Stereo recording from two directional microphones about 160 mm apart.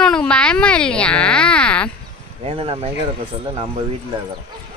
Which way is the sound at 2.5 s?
35° right (ahead or behind).